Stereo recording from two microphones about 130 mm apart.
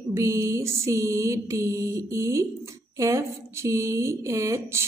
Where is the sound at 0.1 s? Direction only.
20° right (ahead or behind).